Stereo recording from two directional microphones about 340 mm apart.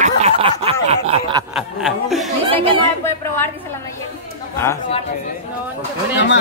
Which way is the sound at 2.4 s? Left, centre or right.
Centre.